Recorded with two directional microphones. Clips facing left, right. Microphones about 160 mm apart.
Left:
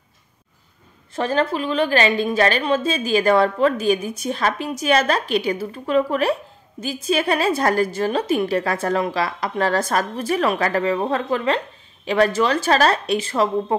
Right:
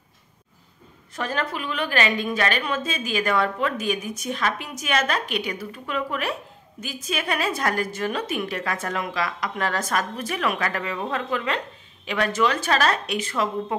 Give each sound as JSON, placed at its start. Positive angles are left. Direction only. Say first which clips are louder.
{"t": 1.1, "sound": "a woman's voice", "louder": "left 7 dB", "side_deg": 30}